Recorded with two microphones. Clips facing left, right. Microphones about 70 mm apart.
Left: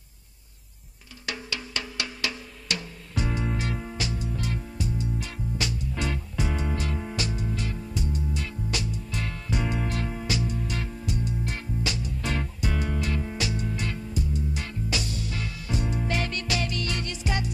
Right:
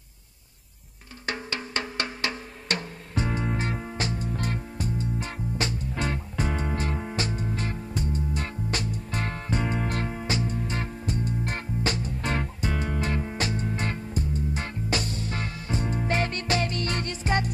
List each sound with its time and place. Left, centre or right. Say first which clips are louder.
1.2 s music: right 3 dB; right